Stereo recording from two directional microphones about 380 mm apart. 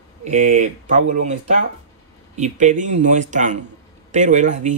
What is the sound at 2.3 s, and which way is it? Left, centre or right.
Speech, centre.